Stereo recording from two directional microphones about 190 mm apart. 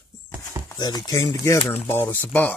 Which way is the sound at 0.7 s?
20° left (ahead or behind).